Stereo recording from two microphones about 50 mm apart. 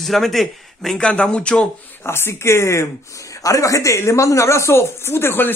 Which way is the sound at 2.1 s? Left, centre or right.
Left.